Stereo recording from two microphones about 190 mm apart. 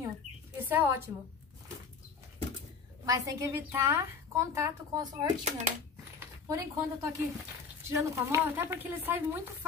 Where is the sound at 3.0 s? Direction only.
15° right (ahead or behind).